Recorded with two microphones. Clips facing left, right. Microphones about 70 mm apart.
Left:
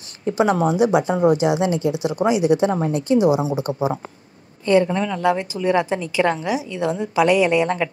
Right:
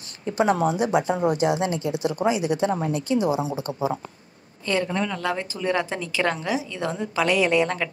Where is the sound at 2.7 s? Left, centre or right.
Left.